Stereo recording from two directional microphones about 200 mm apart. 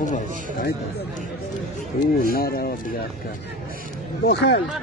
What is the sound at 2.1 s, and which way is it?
Speech, 45° left (ahead or behind).